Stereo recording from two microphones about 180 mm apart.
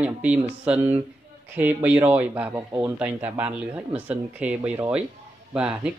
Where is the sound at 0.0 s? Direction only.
5° right (ahead or behind).